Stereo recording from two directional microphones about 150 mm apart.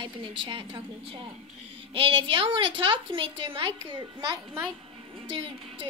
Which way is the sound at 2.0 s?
35° right (ahead or behind).